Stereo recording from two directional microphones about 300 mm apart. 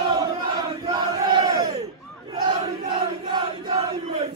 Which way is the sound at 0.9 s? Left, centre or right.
Centre.